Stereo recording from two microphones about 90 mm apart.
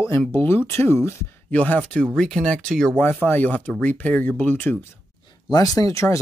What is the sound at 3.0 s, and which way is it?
Speech, 20° left (ahead or behind).